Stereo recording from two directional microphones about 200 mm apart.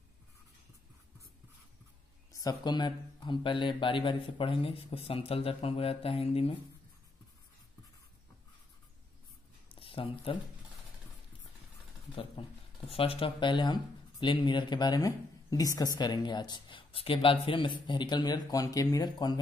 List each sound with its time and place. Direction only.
2.3 s speech: 20° left (ahead or behind)
9.7 s a sound: 25° left (ahead or behind)
12.2 s speech: 30° left (ahead or behind)